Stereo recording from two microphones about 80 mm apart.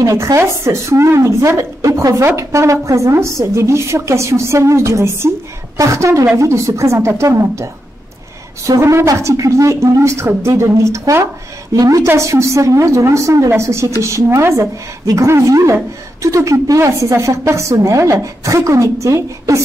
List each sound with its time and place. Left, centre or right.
0.0 s a woman's voice: right